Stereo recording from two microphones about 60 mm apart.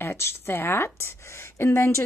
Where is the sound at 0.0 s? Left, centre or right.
Left.